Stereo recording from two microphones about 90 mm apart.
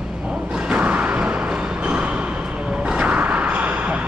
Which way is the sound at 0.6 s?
15° right (ahead or behind).